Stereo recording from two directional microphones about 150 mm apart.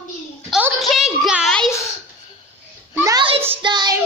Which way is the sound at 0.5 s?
5° right (ahead or behind).